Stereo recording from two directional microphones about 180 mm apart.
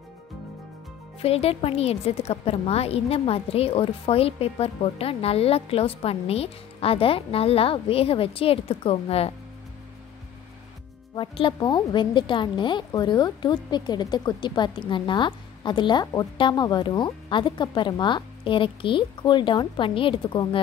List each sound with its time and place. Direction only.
1.2 s a woman's voice: 35° left (ahead or behind)
11.1 s speech: 30° left (ahead or behind)